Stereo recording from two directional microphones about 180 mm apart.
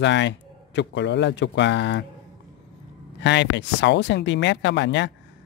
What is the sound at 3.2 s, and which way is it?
Speech, 80° left.